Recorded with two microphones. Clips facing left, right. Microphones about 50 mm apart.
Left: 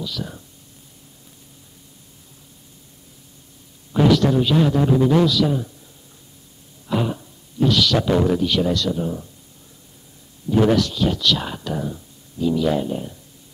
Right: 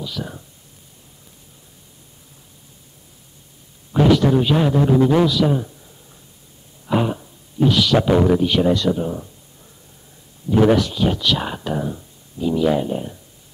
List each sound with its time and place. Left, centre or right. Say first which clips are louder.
0.0 s speech: right 1 dB; centre
3.9 s a man's voice: right 1 dB; centre
6.9 s a man's voice: right 3 dB; centre
10.5 s speech: right 2 dB; centre